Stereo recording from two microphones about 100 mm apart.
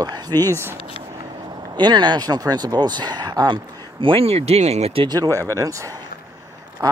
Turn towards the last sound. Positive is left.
turn(degrees=-35)  # may be behind; listen again after turning